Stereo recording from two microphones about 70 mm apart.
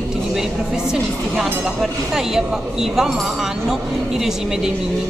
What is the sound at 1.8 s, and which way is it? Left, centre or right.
Speech, centre.